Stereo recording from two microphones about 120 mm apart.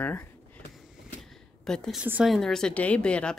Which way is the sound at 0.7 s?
Centre (ahead or behind).